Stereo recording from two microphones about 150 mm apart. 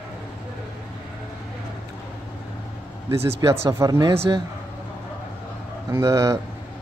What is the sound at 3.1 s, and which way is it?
Speech, 15° right (ahead or behind).